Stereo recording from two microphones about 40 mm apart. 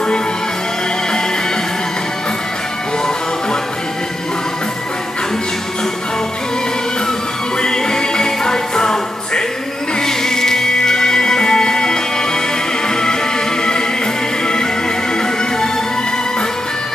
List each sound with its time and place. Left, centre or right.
7.6 s music: centre